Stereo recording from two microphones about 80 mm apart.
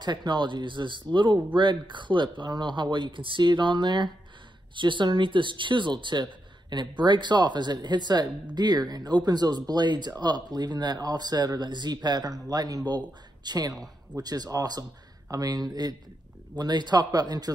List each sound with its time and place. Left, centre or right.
0.0 s speech: right
4.7 s speech: right
6.7 s speech: right